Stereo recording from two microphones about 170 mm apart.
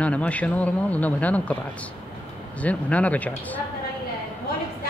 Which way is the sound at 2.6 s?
10° left (ahead or behind).